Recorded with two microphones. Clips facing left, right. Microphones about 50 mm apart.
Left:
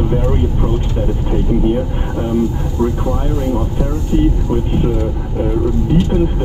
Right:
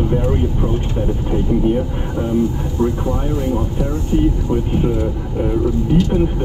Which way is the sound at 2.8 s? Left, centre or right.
Left.